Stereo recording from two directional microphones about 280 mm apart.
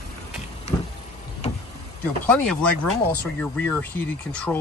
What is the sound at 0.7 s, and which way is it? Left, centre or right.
Vehicle, left.